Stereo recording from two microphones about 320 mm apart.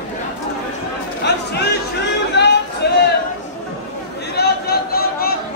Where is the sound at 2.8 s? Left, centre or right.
Left.